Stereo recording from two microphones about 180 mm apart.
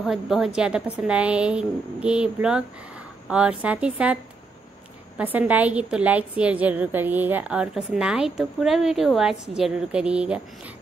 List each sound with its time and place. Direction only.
0.0 s a woman's voice: centre (ahead or behind)